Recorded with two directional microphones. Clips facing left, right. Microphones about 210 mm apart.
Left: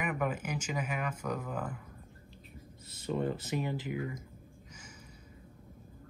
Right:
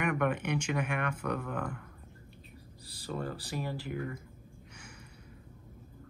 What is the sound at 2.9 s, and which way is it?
Speech, 20° left (ahead or behind).